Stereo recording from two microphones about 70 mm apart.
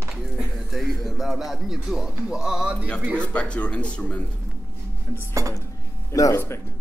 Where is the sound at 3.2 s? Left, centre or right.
Centre.